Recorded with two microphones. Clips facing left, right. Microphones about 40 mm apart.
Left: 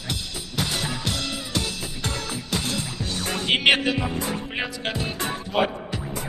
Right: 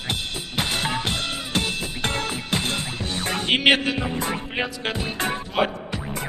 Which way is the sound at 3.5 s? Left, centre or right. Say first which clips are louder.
Right 1 dB; centre.